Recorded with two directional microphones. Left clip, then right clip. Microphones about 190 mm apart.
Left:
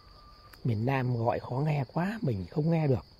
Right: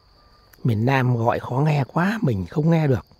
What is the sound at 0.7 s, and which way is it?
Speech, 40° right (ahead or behind).